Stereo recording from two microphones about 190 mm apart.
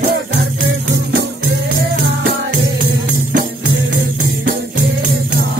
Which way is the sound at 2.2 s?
55° right (ahead or behind).